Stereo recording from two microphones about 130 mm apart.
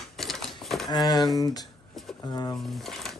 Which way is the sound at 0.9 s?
30° left (ahead or behind).